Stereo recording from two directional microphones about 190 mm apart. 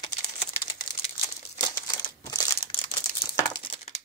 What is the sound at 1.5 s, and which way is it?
Crumpling, 20° left (ahead or behind).